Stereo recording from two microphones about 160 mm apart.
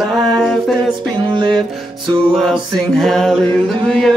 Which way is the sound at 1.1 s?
30° right (ahead or behind).